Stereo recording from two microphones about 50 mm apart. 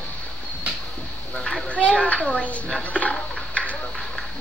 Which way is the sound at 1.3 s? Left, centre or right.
Centre.